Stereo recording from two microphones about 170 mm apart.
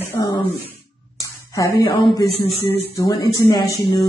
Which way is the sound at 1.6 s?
20° left (ahead or behind).